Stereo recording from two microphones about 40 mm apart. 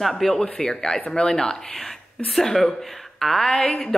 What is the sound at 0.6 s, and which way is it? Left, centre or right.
A woman's voice, centre.